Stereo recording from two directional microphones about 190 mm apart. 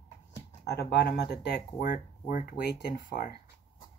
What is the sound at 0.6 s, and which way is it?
Speech, 60° left (ahead or behind).